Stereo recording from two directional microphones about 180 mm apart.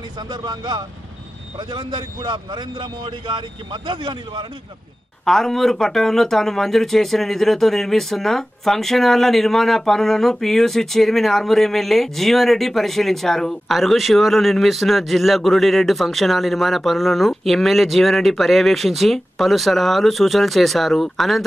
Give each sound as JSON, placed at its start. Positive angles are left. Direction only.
{"t": 0.3, "sound": "a man's voice", "side_deg": -25}
{"t": 5.2, "sound": "speech", "side_deg": 0}